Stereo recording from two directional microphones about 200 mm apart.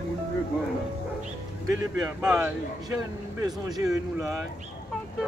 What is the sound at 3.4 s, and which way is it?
Speech, 15° right (ahead or behind).